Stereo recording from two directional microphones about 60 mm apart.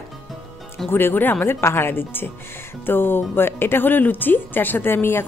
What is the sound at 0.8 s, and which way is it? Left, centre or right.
Speech, left.